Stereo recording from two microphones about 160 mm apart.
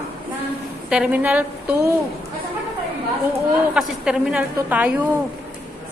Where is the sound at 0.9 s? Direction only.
10° right (ahead or behind).